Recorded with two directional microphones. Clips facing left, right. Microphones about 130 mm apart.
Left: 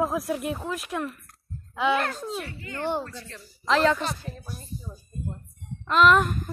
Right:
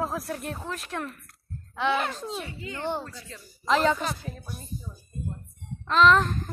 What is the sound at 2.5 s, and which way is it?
Speech, 15° right (ahead or behind).